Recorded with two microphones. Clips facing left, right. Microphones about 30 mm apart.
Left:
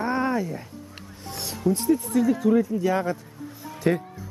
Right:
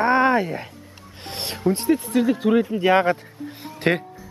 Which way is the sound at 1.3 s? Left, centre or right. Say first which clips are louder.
Right 2 dB; right.